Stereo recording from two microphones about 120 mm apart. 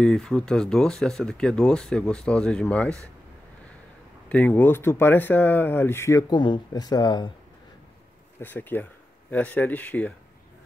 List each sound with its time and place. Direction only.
0.0 s speech: 5° left (ahead or behind)
4.3 s speech: 10° left (ahead or behind)
6.3 s speech: 40° left (ahead or behind)
8.4 s speech: 15° left (ahead or behind)